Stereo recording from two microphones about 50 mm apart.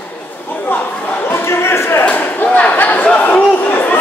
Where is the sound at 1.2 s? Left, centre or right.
Left.